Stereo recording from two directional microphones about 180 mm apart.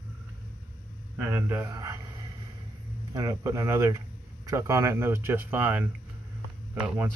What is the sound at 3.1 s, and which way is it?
Speech, 20° right (ahead or behind).